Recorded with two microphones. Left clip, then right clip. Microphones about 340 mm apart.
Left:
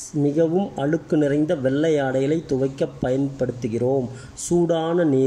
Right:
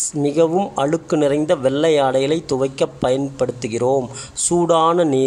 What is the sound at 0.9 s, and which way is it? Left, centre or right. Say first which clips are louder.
Speech: right 3 dB; right.